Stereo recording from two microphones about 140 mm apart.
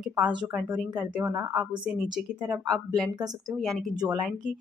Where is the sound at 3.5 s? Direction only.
Centre (ahead or behind).